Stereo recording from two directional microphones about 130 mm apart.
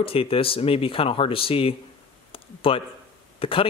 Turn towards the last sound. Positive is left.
turn(degrees=45)  # may be behind; listen again after turning